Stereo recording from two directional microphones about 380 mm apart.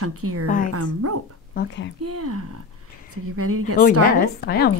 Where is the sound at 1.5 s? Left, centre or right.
Left.